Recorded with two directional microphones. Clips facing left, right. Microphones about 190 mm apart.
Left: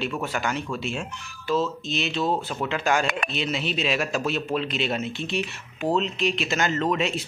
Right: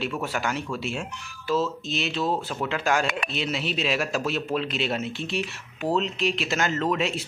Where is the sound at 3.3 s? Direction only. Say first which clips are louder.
Left 1 dB; 5° right (ahead or behind).